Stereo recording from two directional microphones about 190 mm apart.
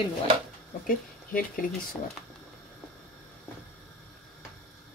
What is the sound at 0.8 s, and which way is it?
Speech, 45° left (ahead or behind).